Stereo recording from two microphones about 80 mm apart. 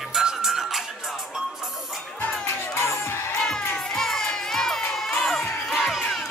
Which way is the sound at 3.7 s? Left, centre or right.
Centre.